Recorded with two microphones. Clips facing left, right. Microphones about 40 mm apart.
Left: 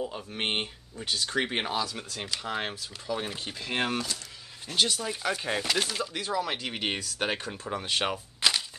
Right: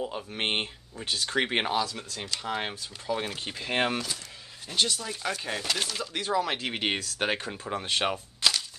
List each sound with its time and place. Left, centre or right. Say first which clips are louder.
0.0 s speech: right 1 dB; centre
1.1 s speech: right 1 dB; right
1.4 s speech: right 5 dB; centre
1.9 s speech: even; centre
2.4 s speech: right 1 dB; centre
3.3 s speech: right 2 dB; right
5.0 s speech: left 2 dB; centre
6.2 s speech: right 5 dB; centre
8.4 s a sound: left 1 dB; centre